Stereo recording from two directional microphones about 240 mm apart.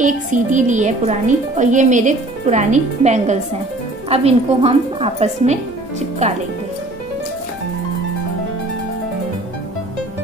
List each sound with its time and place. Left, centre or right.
0.0 s a woman's voice: right